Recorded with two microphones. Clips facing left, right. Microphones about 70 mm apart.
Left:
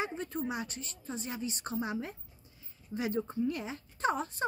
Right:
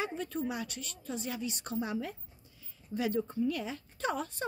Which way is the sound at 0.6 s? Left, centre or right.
Left.